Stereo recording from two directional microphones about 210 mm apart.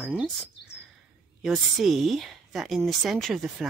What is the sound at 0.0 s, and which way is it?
Speech, centre (ahead or behind).